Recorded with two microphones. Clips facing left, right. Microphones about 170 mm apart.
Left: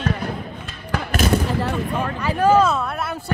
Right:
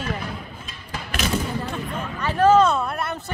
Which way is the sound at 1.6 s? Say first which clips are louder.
Left 6 dB; 70° left (ahead or behind).